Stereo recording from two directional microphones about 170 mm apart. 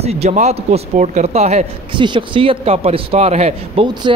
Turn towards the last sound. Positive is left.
turn(degrees=-40)  # may be behind; listen again after turning